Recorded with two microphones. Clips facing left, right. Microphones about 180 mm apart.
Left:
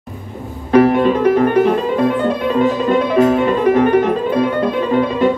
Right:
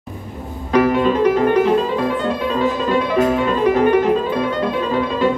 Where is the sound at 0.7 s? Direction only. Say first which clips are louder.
Left 3 dB; 55° left (ahead or behind).